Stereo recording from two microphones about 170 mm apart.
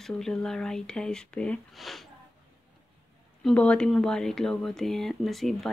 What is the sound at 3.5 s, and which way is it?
Speech, 5° left (ahead or behind).